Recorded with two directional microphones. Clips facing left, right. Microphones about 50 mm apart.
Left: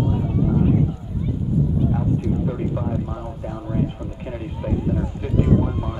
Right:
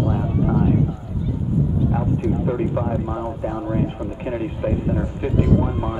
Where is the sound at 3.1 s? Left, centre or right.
Right.